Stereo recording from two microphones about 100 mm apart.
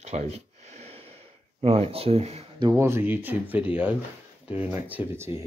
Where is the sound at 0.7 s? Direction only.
90° right.